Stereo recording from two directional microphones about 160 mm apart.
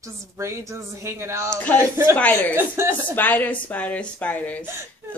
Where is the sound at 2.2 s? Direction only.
10° left (ahead or behind).